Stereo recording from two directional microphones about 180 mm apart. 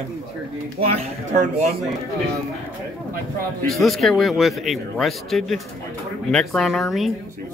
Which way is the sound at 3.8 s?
Centre (ahead or behind).